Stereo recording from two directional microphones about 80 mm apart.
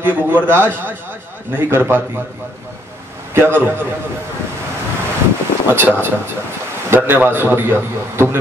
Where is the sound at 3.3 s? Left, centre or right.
Right.